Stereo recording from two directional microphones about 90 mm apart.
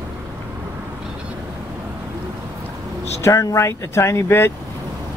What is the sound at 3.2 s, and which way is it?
Speech, 35° left (ahead or behind).